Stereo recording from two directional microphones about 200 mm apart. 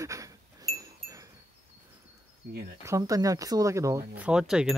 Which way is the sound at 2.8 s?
15° right (ahead or behind).